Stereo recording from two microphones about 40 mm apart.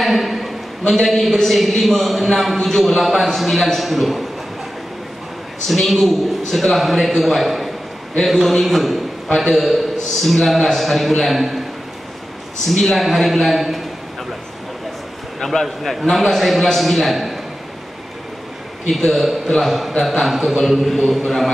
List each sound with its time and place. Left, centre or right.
0.0 s a sound: centre
0.9 s a man's voice: centre
5.7 s a man's voice: centre
12.6 s a man's voice: centre
15.6 s a man's voice: centre
18.9 s a man's voice: centre